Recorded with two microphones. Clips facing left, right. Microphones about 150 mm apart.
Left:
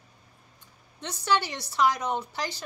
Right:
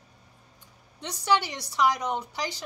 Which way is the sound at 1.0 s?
15° right (ahead or behind).